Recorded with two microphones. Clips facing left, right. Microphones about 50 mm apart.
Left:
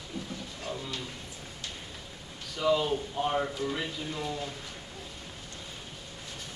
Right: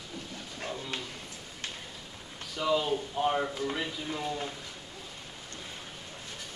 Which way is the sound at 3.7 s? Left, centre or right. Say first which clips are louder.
Even; centre.